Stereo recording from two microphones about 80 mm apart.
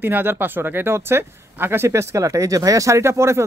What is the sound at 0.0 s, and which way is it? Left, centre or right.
Speech, right.